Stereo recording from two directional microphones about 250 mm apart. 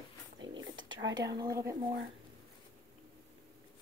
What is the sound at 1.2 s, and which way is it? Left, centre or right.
Speech, centre.